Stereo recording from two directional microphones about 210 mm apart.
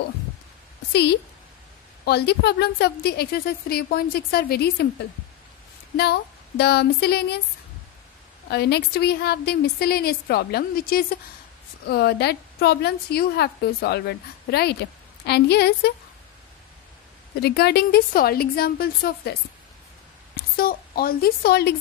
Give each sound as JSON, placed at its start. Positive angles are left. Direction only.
{"t": 0.9, "sound": "a woman's voice", "side_deg": 50}
{"t": 8.5, "sound": "a woman's voice", "side_deg": 50}
{"t": 17.4, "sound": "a woman's voice", "side_deg": 50}
{"t": 20.5, "sound": "a woman's voice", "side_deg": 45}